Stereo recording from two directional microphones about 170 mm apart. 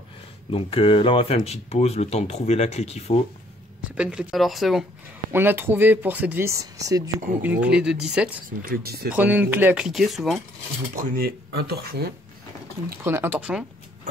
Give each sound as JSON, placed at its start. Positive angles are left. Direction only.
{"t": 0.5, "sound": "speech", "side_deg": 35}
{"t": 3.9, "sound": "speech", "side_deg": -5}
{"t": 5.3, "sound": "speech", "side_deg": -10}
{"t": 7.6, "sound": "speech", "side_deg": -5}
{"t": 8.5, "sound": "speech", "side_deg": -60}
{"t": 9.1, "sound": "speech", "side_deg": -10}
{"t": 11.0, "sound": "speech", "side_deg": -60}
{"t": 13.0, "sound": "speech", "side_deg": -15}